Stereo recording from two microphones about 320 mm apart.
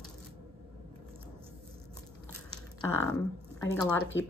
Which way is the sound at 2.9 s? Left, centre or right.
Centre.